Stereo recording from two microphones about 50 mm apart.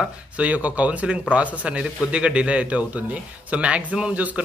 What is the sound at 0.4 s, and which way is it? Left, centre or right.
A man's voice, right.